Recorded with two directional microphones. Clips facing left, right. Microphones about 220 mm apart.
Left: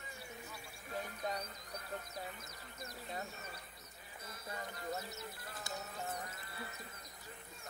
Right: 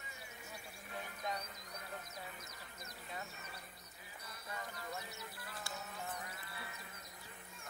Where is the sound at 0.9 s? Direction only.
40° left (ahead or behind).